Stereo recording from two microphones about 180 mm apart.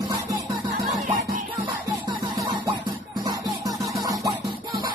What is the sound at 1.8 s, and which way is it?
Music, 25° right (ahead or behind).